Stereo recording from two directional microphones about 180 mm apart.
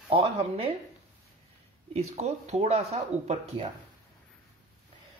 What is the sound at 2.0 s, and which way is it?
Speech, 40° right (ahead or behind).